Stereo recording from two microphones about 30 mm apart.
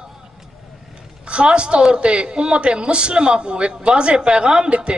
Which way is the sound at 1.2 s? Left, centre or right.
Right.